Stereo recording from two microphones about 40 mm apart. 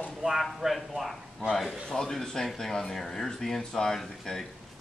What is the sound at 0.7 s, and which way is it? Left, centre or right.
Speech, centre.